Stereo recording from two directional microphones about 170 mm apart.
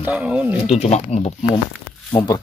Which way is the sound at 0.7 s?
40° left (ahead or behind).